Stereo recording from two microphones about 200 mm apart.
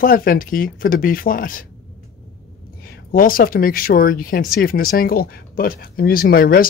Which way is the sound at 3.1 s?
45° left (ahead or behind).